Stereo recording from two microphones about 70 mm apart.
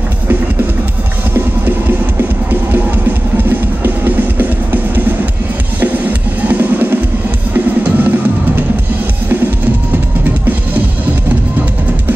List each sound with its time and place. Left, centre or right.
2.7 s music: right
5.8 s music: right